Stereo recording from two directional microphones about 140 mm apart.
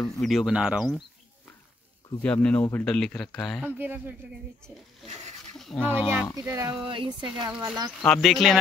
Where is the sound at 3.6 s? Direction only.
15° right (ahead or behind).